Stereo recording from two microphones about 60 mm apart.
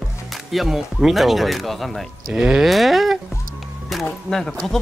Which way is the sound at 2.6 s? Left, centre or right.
Centre.